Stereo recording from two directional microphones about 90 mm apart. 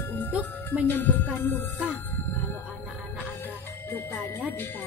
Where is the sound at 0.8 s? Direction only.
20° left (ahead or behind).